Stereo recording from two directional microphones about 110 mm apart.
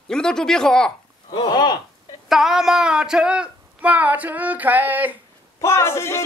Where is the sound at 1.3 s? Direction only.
40° left (ahead or behind).